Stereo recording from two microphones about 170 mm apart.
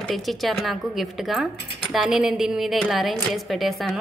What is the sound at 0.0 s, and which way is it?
Speech, centre (ahead or behind).